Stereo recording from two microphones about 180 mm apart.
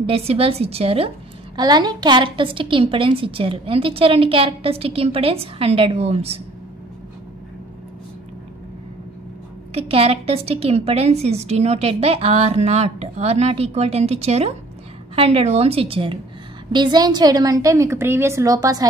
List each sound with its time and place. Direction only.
0.0 s a woman's voice: 35° right (ahead or behind)
9.8 s a woman's voice: 30° right (ahead or behind)